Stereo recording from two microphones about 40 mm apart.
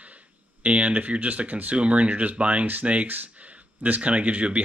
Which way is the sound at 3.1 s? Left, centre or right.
Right.